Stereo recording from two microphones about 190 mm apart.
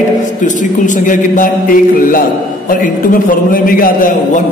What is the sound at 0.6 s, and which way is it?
A man's voice, 45° left (ahead or behind).